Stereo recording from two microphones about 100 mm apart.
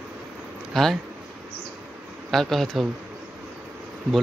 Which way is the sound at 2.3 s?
Centre (ahead or behind).